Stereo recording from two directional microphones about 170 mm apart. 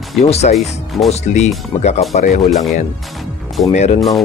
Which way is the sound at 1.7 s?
25° left (ahead or behind).